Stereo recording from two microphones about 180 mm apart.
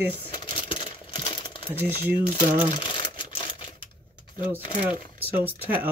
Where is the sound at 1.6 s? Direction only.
10° right (ahead or behind).